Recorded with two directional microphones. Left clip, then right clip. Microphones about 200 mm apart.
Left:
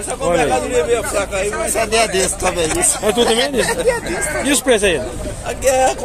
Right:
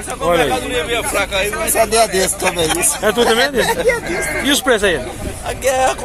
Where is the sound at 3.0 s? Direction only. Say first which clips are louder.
Right 1 dB; centre (ahead or behind).